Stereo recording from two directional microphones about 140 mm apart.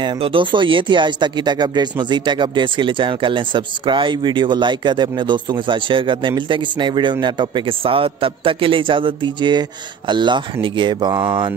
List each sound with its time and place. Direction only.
0.0 s speech: 35° right (ahead or behind)